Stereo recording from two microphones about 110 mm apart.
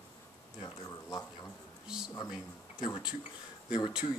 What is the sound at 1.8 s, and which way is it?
Speech, 5° right (ahead or behind).